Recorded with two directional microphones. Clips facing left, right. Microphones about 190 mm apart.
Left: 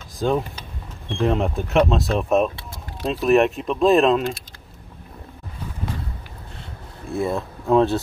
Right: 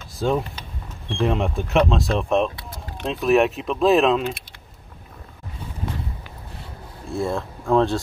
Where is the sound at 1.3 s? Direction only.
Centre (ahead or behind).